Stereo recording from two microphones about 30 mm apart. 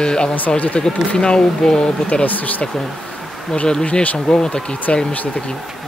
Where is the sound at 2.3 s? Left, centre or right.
Left.